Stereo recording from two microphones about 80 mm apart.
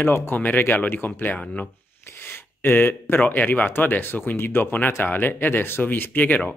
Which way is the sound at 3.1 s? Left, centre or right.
Left.